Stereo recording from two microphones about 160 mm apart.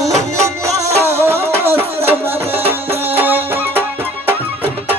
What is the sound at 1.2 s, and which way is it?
Music, 15° right (ahead or behind).